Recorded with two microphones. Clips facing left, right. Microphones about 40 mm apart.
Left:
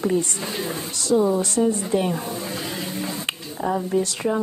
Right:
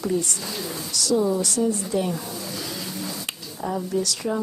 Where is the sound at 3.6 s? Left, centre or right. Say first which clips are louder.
Left 3 dB; left.